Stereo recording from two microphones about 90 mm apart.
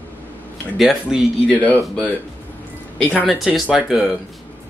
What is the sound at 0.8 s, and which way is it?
Speech, centre (ahead or behind).